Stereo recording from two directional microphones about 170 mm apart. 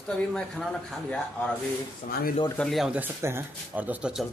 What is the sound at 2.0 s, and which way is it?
Speech, 45° left (ahead or behind).